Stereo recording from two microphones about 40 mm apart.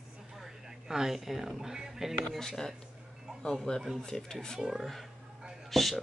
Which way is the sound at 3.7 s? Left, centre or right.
Left.